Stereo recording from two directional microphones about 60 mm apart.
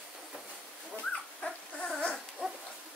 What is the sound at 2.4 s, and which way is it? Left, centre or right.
Dog, centre.